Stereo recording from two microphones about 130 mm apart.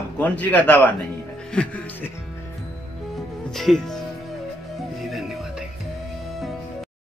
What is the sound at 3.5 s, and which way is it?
Speech, centre (ahead or behind).